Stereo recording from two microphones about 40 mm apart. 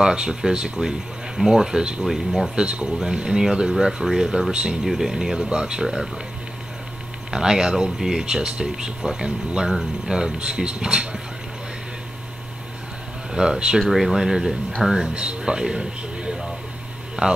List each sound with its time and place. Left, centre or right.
0.0 s speech: centre
4.8 s speech: centre
7.2 s speech: centre
13.3 s speech: centre
13.8 s speech: centre
15.1 s a man's voice: right